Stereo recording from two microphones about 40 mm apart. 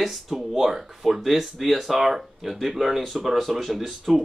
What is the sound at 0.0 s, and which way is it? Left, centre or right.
Speech, centre.